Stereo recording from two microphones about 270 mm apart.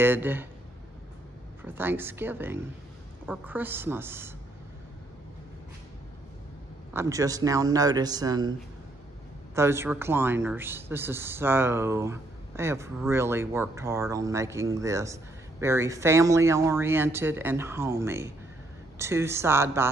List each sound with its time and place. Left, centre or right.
0.0 s speech: centre
1.6 s speech: centre
6.9 s speech: centre
9.6 s speech: centre